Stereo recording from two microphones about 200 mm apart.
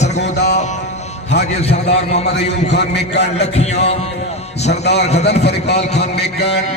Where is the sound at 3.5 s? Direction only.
35° left (ahead or behind).